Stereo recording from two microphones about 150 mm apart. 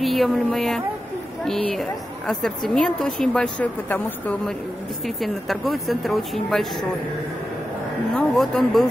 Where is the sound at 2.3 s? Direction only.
5° left (ahead or behind).